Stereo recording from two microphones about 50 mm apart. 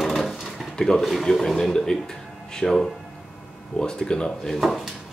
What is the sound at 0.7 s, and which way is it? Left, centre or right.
Speech, centre.